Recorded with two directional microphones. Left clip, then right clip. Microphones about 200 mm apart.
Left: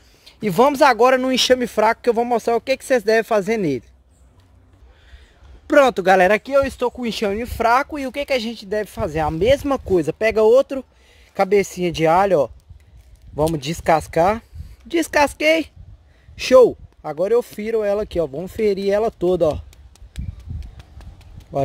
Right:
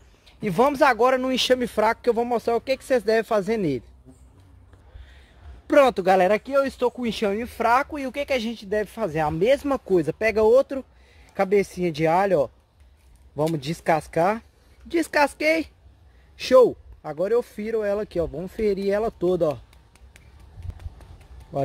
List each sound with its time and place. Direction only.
0.2 s speech: 55° left (ahead or behind); by 3.8 s 35° left (ahead or behind)
5.7 s speech: 30° left (ahead or behind)
6.2 s speech: 55° left (ahead or behind)
13.6 s speech: 40° left (ahead or behind)